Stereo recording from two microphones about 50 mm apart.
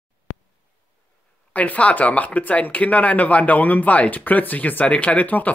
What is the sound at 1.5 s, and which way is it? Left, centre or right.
Speech, left.